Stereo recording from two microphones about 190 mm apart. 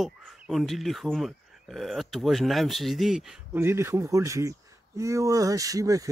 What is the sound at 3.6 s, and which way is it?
Speech, 15° right (ahead or behind).